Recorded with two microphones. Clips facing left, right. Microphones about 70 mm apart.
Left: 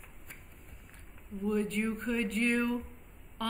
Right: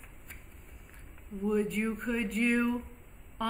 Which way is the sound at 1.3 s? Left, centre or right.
Centre.